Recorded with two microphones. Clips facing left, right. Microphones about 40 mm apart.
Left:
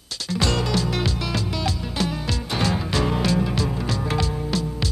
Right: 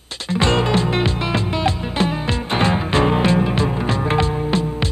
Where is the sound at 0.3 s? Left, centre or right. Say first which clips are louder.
Right 6 dB; right.